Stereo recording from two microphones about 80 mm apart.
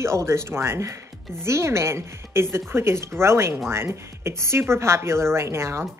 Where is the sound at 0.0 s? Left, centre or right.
Right.